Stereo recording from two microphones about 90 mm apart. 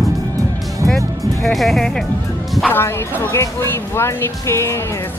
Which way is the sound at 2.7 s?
25° left (ahead or behind).